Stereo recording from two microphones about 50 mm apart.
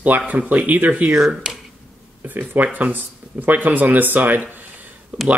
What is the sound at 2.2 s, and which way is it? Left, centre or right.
Speech, right.